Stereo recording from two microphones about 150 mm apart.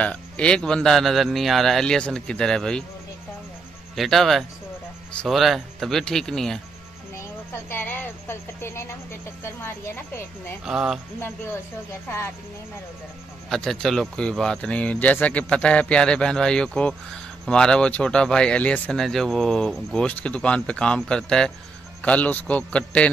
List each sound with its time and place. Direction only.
0.0 s speech: 10° left (ahead or behind)
3.9 s speech: centre (ahead or behind); by 9.7 s 15° left (ahead or behind)
10.6 s speech: 5° right (ahead or behind)
13.5 s speech: centre (ahead or behind)